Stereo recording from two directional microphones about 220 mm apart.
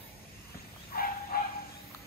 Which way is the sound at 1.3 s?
40° left (ahead or behind).